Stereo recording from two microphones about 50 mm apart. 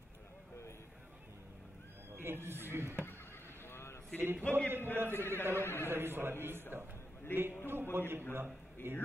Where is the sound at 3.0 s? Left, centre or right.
Left.